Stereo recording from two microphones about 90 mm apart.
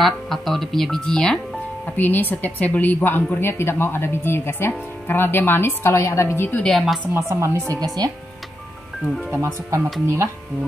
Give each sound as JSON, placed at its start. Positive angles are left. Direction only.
{"t": 0.0, "sound": "speech", "side_deg": 0}
{"t": 2.0, "sound": "a woman's voice", "side_deg": 20}
{"t": 6.6, "sound": "a woman's voice", "side_deg": 5}
{"t": 7.2, "sound": "speech", "side_deg": -30}
{"t": 9.3, "sound": "speech", "side_deg": -35}